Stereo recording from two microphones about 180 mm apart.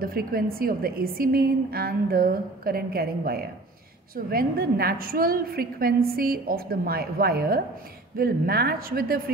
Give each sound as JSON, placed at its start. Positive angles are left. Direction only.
{"t": 0.0, "sound": "a woman's voice", "side_deg": -55}